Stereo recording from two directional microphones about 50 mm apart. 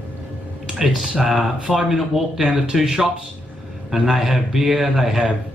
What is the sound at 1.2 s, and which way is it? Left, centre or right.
Speech, centre.